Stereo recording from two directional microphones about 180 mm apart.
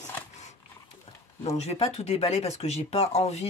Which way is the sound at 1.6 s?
35° left (ahead or behind).